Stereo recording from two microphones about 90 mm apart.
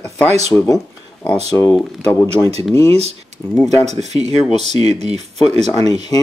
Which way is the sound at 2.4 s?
30° left (ahead or behind).